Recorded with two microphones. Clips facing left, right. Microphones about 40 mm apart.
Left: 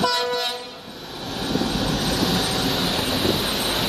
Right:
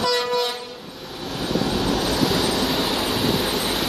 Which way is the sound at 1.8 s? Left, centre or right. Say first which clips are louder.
Right 2 dB; centre.